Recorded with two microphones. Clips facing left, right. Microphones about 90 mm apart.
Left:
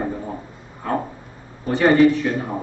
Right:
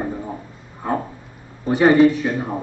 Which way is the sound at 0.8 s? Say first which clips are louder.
Right 1 dB; 20° right (ahead or behind).